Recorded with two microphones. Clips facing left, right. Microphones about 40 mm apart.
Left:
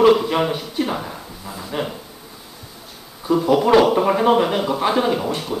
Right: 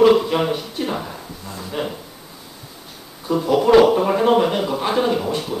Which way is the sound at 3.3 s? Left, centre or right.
Centre.